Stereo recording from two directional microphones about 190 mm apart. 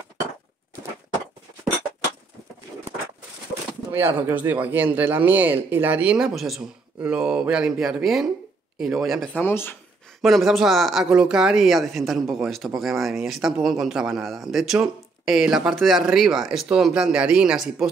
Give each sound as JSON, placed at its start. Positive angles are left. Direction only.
{"t": 4.3, "sound": "speech", "side_deg": -10}
{"t": 10.2, "sound": "speech", "side_deg": 0}